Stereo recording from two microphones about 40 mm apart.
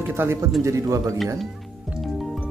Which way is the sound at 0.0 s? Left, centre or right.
Right.